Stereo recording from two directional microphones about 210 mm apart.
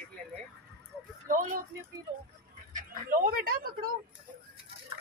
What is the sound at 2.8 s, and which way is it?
Speech, 40° right (ahead or behind).